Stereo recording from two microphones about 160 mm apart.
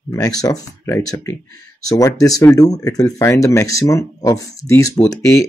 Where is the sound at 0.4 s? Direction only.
20° left (ahead or behind).